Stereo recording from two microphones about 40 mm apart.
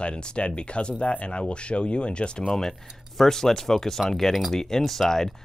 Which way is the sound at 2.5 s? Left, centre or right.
Centre.